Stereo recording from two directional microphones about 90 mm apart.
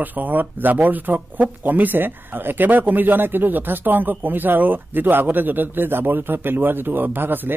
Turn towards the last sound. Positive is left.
turn(degrees=-20)  # may be behind; listen again after turning